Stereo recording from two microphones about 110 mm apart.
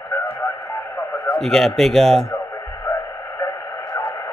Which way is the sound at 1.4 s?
5° left (ahead or behind).